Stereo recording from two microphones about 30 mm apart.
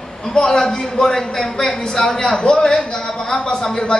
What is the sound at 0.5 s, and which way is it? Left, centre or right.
Speech, centre.